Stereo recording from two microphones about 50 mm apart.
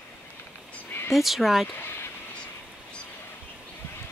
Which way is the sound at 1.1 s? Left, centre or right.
Centre.